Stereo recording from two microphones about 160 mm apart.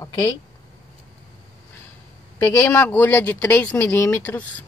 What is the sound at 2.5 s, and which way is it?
Speech, 15° left (ahead or behind).